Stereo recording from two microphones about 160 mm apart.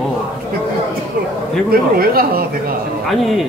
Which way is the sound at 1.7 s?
70° right (ahead or behind).